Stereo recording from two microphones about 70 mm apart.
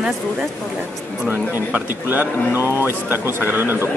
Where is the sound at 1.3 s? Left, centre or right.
Right.